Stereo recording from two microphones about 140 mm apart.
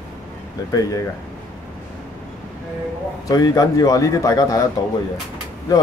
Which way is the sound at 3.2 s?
25° left (ahead or behind).